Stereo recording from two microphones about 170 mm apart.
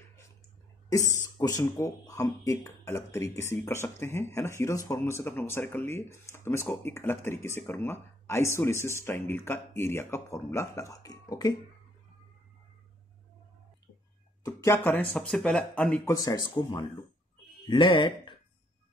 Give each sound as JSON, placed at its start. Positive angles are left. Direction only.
{"t": 1.1, "sound": "speech", "side_deg": 20}
{"t": 14.4, "sound": "speech", "side_deg": 15}
{"t": 16.2, "sound": "speech", "side_deg": 20}